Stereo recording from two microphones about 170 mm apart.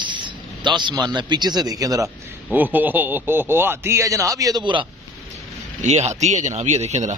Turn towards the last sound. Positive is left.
turn(degrees=-45)  # may be behind; listen again after turning